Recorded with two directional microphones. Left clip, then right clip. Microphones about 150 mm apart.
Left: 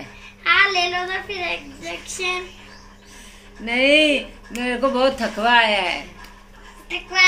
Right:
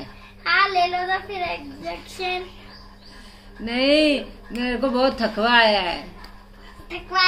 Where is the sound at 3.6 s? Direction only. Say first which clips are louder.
Left 3 dB; 45° right (ahead or behind).